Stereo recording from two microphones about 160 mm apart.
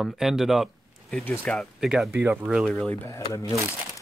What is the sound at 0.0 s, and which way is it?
Speech, centre (ahead or behind).